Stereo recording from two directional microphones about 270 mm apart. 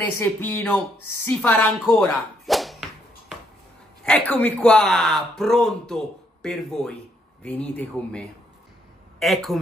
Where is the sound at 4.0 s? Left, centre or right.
Centre.